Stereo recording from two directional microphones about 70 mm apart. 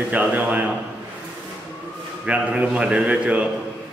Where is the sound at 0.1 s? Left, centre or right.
Right.